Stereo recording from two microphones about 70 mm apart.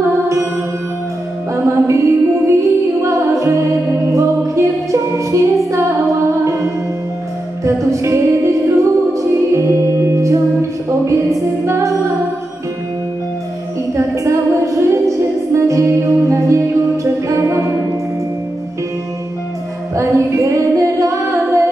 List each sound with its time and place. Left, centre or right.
1.5 s music: right
10.9 s a capella: right
13.9 s a sound: right
15.5 s music: right
20.0 s a capella: right